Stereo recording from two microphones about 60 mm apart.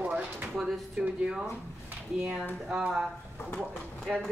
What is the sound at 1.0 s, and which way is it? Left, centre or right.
Speech, centre.